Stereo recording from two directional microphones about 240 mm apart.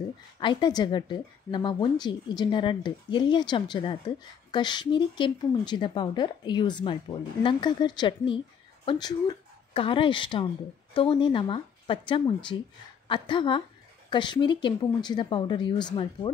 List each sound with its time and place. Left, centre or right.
0.4 s a woman's voice: centre